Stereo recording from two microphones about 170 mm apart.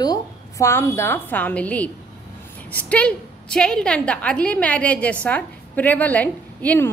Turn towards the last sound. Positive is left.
turn(degrees=10)  # may be behind; listen again after turning